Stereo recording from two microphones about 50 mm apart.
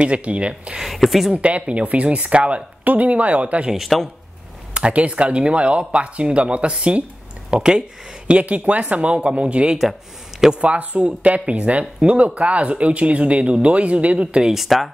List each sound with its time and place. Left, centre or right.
0.0 s speech: right
0.7 s a sound: centre
1.3 s speech: right
3.7 s speech: centre
4.7 s speech: right
12.0 s speech: centre
12.4 s speech: right
14.5 s speech: centre